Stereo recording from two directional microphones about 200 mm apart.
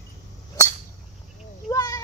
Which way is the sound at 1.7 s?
15° left (ahead or behind).